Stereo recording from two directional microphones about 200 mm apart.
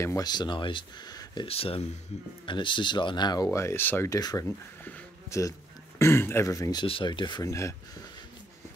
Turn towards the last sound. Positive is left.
turn(degrees=15)  # may be behind; listen again after turning